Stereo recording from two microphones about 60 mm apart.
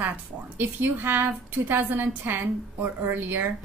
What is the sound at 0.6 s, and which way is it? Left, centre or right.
A woman's voice, right.